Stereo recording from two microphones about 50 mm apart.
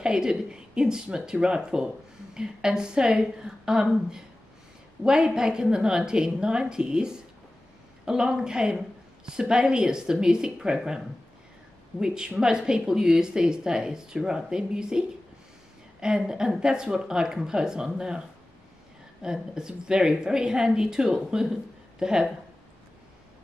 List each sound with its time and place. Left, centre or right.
0.0 s speech: centre
5.0 s a woman's voice: centre
12.0 s speech: centre
19.2 s speech: centre